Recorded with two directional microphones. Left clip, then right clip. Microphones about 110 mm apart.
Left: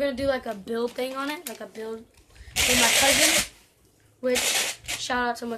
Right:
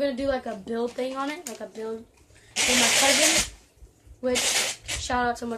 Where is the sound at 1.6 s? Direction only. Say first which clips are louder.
Right 1 dB; 5° left (ahead or behind).